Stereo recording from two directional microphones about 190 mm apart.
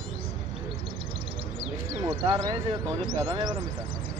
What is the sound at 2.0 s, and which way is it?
Speech, 20° right (ahead or behind).